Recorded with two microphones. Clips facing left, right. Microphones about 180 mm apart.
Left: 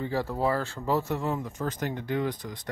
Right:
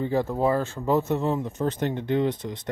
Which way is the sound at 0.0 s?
20° right (ahead or behind).